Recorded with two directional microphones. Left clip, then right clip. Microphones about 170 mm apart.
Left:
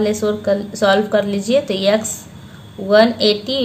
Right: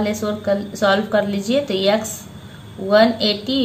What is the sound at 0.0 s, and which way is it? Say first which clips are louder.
A woman's voice: left 4 dB; 30° left (ahead or behind).